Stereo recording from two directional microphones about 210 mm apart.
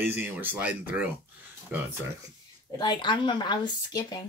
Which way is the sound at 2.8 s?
20° left (ahead or behind).